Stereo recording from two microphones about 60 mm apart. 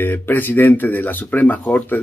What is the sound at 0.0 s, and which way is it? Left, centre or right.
Speech, left.